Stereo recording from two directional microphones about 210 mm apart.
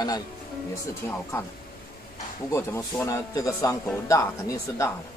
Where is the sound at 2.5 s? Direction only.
10° left (ahead or behind).